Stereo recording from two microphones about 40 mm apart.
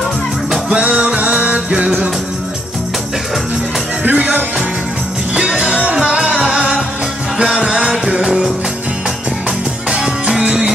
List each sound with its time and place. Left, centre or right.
0.7 s music: right
4.0 s music: right
5.6 s music: right
9.8 s music: right